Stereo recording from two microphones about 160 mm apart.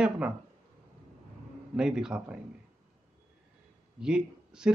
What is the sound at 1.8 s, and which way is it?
Speech, 5° right (ahead or behind).